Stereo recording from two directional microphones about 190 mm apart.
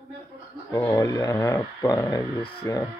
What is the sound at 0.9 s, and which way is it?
Speech, 20° left (ahead or behind).